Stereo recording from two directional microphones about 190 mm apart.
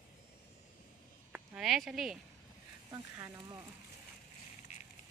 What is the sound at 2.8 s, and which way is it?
Speech, 15° right (ahead or behind).